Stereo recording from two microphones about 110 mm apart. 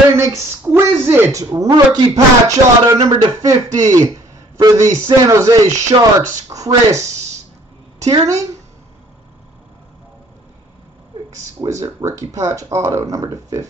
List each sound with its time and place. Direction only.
0.2 s a woman's voice: 25° right (ahead or behind)
11.2 s a woman's voice: 30° right (ahead or behind)